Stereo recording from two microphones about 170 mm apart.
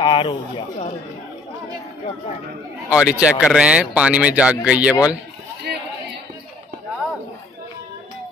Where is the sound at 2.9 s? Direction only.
5° right (ahead or behind).